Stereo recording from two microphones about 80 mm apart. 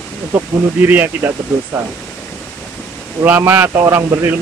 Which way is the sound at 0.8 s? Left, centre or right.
Right.